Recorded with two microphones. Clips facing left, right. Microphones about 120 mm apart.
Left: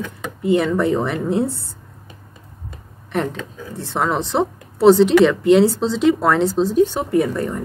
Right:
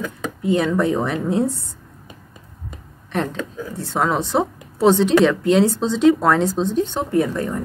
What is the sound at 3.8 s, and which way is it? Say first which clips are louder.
Speech: even; centre (ahead or behind).